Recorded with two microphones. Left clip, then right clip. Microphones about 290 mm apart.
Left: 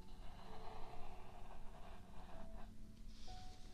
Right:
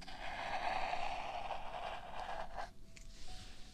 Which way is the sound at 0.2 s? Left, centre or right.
Right.